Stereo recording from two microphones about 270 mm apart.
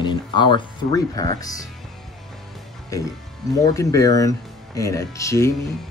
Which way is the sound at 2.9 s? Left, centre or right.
Centre.